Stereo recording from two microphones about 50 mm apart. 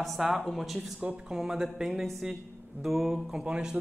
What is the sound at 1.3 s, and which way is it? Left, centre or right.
Speech, centre.